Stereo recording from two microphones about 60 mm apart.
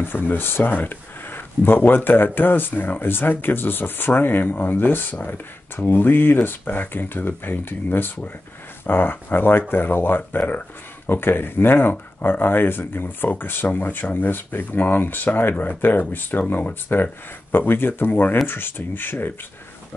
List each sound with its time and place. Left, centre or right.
0.0 s speech: left